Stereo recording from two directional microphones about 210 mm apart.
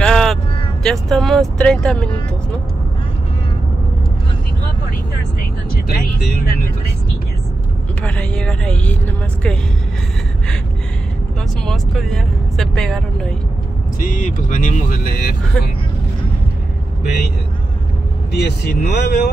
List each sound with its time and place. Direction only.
0.0 s vehicle: 5° left (ahead or behind)
0.8 s speech: centre (ahead or behind)
6.4 s speech: 45° left (ahead or behind)
8.0 s speech: 5° left (ahead or behind)
11.6 s speech: centre (ahead or behind)
13.9 s speech: 40° left (ahead or behind)
15.5 s speech: 5° left (ahead or behind)
18.3 s speech: 50° left (ahead or behind)